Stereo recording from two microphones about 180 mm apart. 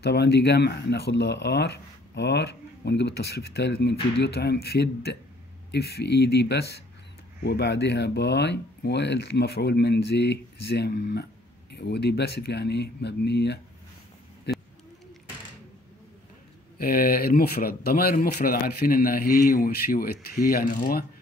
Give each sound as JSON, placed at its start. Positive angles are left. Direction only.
{"t": 0.0, "sound": "speech", "side_deg": 65}
{"t": 14.5, "sound": "bird", "side_deg": 65}
{"t": 16.7, "sound": "speech", "side_deg": 55}